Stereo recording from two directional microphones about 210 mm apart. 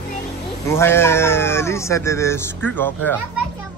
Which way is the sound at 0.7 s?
10° left (ahead or behind).